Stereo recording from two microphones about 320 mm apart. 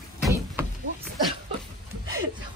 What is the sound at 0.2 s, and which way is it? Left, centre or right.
Vehicle, centre.